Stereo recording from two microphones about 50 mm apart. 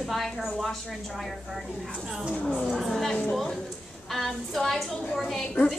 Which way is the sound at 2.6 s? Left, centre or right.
Centre.